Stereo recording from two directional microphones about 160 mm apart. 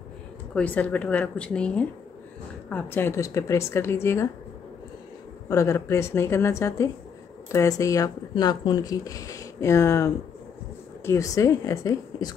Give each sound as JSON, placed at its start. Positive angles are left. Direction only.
{"t": 0.6, "sound": "speech", "side_deg": 10}
{"t": 5.5, "sound": "speech", "side_deg": 20}